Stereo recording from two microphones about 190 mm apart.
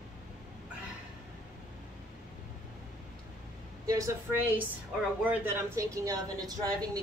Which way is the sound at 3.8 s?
20° right (ahead or behind).